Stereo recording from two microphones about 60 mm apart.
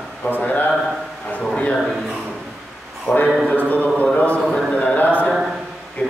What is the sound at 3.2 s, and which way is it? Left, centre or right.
Speech, centre.